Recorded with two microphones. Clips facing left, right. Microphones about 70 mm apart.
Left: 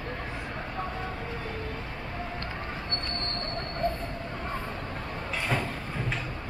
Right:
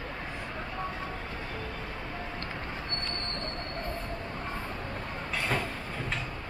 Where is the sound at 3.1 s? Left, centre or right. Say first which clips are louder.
Left 2 dB; left.